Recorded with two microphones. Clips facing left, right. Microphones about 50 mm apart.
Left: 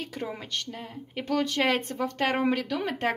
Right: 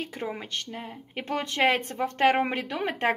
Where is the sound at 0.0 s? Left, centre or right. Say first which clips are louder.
Right 1 dB; centre.